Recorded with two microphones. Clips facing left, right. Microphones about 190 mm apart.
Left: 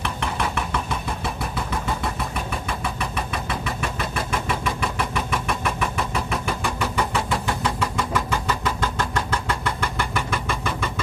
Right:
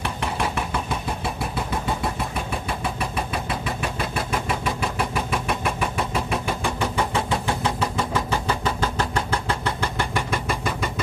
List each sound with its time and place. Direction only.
0.0 s engine: 35° right (ahead or behind)
1.2 s vehicle: 30° right (ahead or behind)